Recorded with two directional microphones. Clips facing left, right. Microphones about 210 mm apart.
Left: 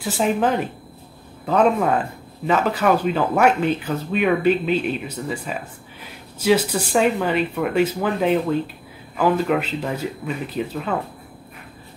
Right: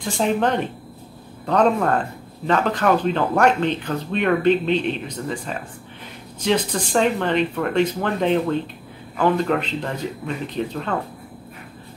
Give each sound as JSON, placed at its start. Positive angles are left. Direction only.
{"t": 0.0, "sound": "a woman's voice", "side_deg": 5}